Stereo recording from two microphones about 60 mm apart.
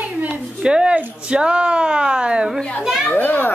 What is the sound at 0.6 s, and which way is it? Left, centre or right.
Speech, centre.